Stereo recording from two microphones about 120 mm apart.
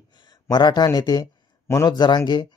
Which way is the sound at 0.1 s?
40° left (ahead or behind).